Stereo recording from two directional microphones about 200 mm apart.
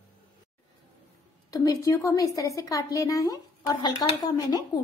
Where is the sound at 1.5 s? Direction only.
20° left (ahead or behind).